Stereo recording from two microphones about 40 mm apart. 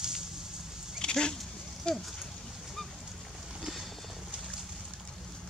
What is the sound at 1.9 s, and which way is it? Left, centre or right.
Speech, left.